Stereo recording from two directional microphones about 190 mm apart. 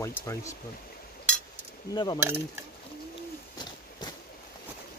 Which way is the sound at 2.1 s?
10° right (ahead or behind).